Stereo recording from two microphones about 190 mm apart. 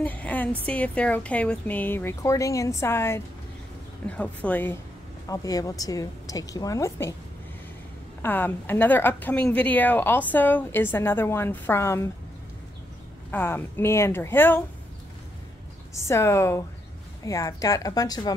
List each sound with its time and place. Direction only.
0.0 s a woman's voice: 10° left (ahead or behind)
8.2 s a woman's voice: 10° left (ahead or behind)
13.3 s a woman's voice: 10° left (ahead or behind)
15.9 s a woman's voice: 15° left (ahead or behind)